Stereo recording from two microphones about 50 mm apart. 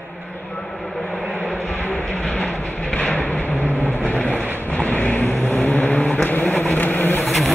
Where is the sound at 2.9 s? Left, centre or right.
Left.